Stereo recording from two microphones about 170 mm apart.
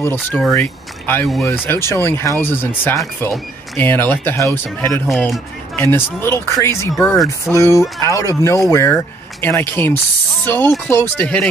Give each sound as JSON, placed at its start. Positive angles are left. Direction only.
{"t": 0.0, "sound": "speech", "side_deg": 10}
{"t": 1.2, "sound": "speech", "side_deg": 0}
{"t": 1.5, "sound": "speech", "side_deg": 15}
{"t": 5.0, "sound": "speech", "side_deg": 0}
{"t": 5.8, "sound": "speech", "side_deg": 10}